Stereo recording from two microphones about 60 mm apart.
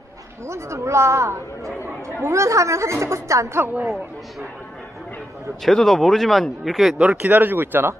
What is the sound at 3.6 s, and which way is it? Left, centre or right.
Speech, right.